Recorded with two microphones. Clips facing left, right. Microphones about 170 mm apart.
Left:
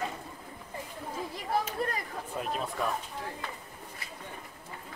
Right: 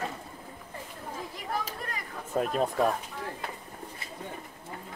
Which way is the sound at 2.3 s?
45° right (ahead or behind).